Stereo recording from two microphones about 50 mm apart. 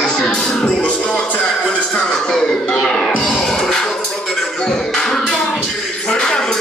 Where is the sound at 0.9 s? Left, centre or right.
Left.